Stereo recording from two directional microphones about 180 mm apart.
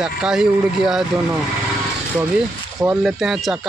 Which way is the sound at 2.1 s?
5° right (ahead or behind).